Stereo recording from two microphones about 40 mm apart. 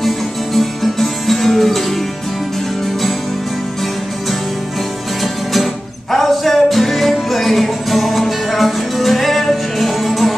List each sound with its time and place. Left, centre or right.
0.6 s music: centre
6.1 s music: centre